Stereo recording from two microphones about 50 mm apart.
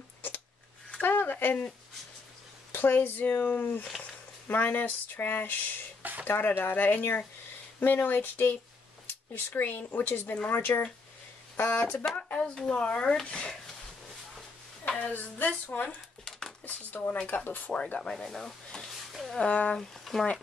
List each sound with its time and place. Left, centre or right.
1.0 s a sound: left
2.7 s speech: left
12.3 s speech: left
14.9 s a woman's voice: left
15.1 s speech: left
16.3 s a sound: centre
16.6 s speech: left
18.0 s speech: centre
18.9 s a sound: centre
19.4 s speech: left
19.7 s speech: centre